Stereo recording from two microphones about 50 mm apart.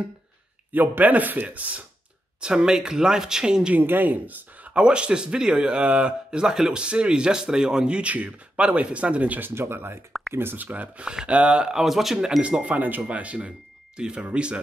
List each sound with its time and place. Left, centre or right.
0.7 s speech: right
2.4 s speech: centre
3.7 s speech: right
4.7 s speech: centre
9.4 s speech: right
11.1 s speech: right
11.8 s speech: centre
12.2 s speech: centre
13.9 s speech: centre